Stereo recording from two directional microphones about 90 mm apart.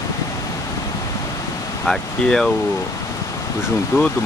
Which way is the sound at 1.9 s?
5° left (ahead or behind).